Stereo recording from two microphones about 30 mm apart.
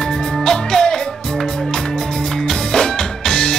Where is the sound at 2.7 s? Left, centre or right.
Centre.